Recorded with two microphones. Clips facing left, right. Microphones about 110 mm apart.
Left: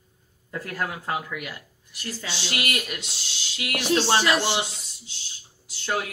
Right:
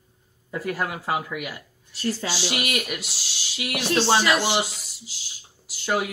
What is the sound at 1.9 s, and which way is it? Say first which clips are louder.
Speech: right 9 dB; 30° right (ahead or behind).